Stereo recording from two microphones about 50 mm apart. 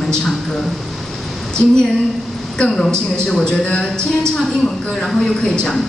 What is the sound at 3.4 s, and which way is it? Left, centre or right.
Speech, left.